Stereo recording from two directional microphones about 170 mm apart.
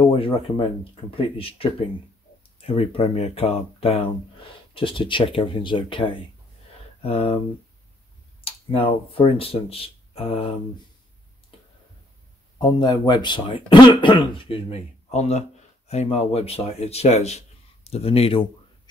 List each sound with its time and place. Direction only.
0.0 s speech: 35° left (ahead or behind)
8.5 s speech: 35° left (ahead or behind)
12.5 s speech: 25° left (ahead or behind)